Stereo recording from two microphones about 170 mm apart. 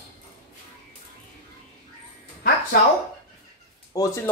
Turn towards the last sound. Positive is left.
turn(degrees=20)  # may be behind; listen again after turning